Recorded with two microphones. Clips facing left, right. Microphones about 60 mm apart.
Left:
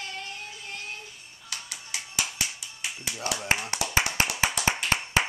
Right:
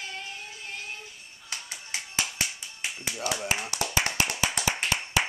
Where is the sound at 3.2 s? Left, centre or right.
Left.